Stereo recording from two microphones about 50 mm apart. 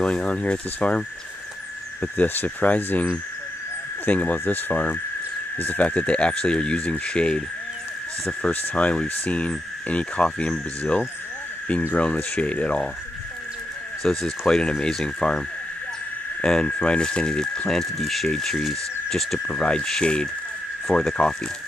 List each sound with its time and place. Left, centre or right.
0.0 s speech: centre
2.0 s speech: left; by 7.4 s centre
8.7 s speech: left
14.0 s speech: centre